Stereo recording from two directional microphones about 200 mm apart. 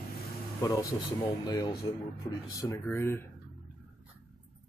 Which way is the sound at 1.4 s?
20° left (ahead or behind).